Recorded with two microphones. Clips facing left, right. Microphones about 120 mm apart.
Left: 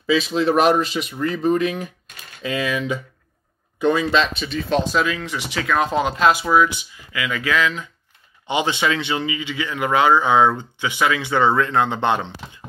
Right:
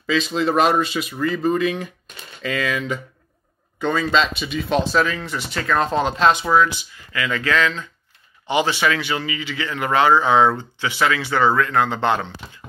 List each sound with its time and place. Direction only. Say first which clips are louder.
0.0 s speech: left 2 dB; 5° left (ahead or behind)
4.4 s a man's voice: even; 5° right (ahead or behind); by 12.5 s 20° left (ahead or behind)